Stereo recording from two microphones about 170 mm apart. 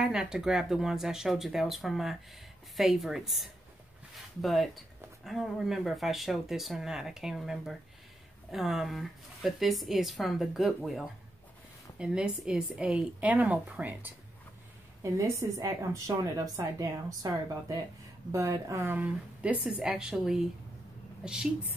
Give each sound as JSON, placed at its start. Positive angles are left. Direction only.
{"t": 0.0, "sound": "a woman's voice", "side_deg": -5}